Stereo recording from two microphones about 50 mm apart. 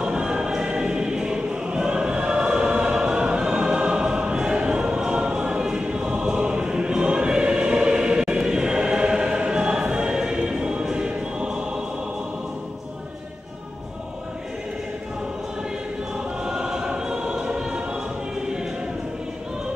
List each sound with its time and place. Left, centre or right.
0.0 s choir: centre
16.4 s choir: centre